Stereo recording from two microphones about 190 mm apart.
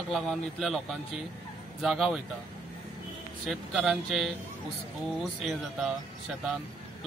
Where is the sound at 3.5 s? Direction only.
Centre (ahead or behind).